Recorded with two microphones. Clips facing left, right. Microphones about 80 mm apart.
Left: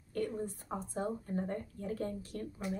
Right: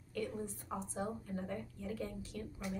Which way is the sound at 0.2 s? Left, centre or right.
Left.